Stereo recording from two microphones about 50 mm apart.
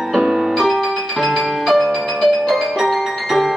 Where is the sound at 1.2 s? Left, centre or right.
Centre.